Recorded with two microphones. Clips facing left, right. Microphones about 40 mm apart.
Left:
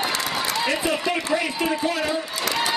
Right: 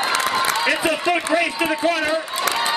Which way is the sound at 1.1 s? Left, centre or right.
Right.